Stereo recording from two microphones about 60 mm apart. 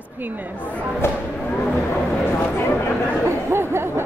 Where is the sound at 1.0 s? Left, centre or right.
Left.